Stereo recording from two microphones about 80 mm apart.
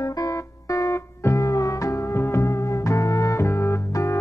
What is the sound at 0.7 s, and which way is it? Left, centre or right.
Music, left.